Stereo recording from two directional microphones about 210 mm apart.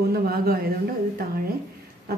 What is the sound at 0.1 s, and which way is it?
A woman's voice, 45° right (ahead or behind).